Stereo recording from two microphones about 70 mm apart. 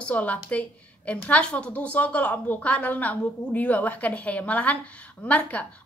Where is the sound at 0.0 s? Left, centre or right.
Centre.